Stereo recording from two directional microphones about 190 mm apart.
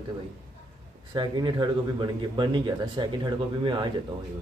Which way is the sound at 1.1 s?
20° right (ahead or behind).